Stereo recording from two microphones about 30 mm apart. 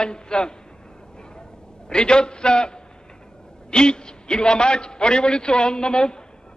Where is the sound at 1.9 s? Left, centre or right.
Left.